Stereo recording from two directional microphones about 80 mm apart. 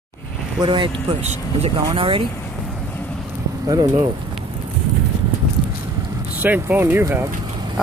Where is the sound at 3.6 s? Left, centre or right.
Right.